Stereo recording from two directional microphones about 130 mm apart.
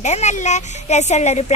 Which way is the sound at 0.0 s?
60° left (ahead or behind).